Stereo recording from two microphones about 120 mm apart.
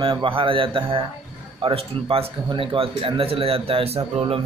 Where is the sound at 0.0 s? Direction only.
45° right (ahead or behind).